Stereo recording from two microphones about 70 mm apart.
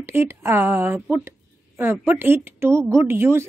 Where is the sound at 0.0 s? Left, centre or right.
Right.